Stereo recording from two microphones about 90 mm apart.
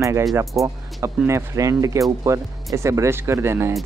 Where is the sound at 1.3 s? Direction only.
35° right (ahead or behind).